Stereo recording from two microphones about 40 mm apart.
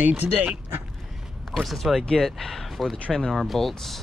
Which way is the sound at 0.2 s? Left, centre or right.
Right.